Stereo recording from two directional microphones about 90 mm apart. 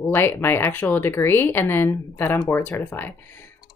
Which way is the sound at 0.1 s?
25° left (ahead or behind).